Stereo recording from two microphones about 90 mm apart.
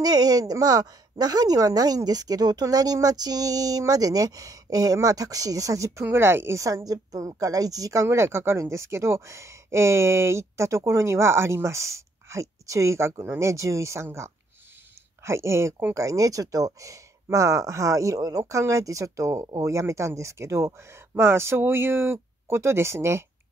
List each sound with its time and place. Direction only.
0.0 s a woman's voice: 45° right (ahead or behind); by 23.2 s 30° right (ahead or behind)